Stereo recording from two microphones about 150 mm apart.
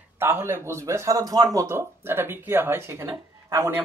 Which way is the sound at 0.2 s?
15° right (ahead or behind).